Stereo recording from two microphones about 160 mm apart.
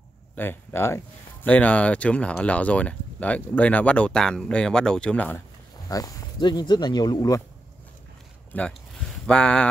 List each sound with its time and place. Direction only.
0.4 s speech: 15° left (ahead or behind)
5.9 s speech: 20° left (ahead or behind)
8.5 s speech: 10° left (ahead or behind)